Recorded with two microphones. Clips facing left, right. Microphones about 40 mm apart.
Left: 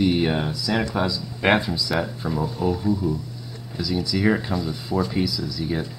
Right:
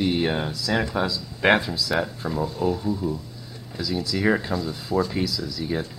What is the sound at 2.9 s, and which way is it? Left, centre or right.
Speech, centre.